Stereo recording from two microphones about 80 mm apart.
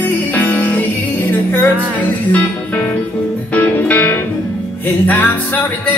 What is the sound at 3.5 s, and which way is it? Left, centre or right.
Music, left.